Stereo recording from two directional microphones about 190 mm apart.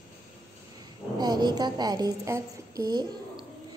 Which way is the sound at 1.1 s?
20° right (ahead or behind).